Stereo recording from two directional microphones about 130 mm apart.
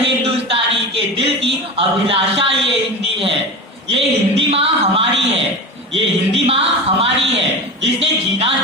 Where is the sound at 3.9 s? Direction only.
50° right (ahead or behind).